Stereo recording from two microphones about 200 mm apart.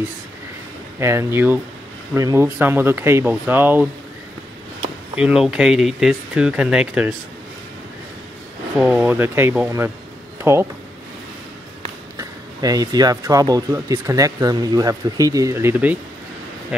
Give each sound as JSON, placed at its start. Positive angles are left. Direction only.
{"t": 0.9, "sound": "speech", "side_deg": -15}
{"t": 5.1, "sound": "speech", "side_deg": -5}
{"t": 8.7, "sound": "speech", "side_deg": -5}
{"t": 12.2, "sound": "speech", "side_deg": -20}